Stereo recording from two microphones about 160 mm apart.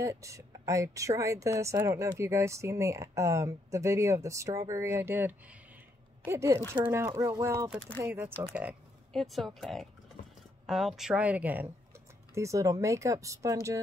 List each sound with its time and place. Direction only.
0.0 s speech: 20° right (ahead or behind)
9.1 s speech: centre (ahead or behind); by 13.7 s 20° right (ahead or behind)